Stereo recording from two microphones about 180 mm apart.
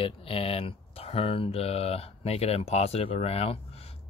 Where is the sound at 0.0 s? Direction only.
30° left (ahead or behind).